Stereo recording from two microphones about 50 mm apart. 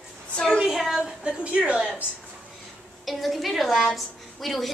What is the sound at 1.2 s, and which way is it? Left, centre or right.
Speech, right.